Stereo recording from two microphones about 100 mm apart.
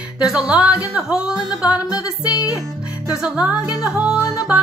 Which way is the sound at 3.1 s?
10° right (ahead or behind).